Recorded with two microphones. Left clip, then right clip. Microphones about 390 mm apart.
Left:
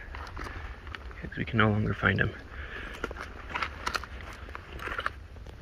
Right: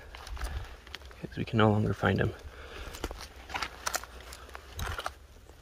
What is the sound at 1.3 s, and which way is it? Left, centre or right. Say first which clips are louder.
Speech: even; centre.